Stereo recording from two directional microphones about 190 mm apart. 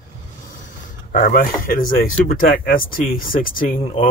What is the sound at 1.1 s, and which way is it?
Speech, 45° left (ahead or behind).